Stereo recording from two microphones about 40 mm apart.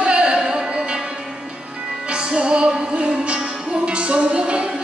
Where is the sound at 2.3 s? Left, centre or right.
Right.